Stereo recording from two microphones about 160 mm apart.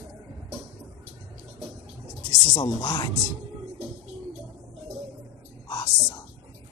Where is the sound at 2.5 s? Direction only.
20° left (ahead or behind).